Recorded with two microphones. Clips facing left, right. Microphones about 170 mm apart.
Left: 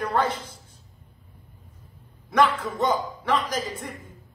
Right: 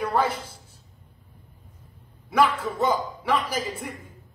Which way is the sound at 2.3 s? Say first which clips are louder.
Even; 10° right (ahead or behind).